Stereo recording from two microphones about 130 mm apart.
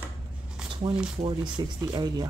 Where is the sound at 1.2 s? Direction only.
35° right (ahead or behind).